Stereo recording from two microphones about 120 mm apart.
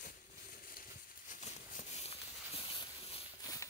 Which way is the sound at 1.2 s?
90° left.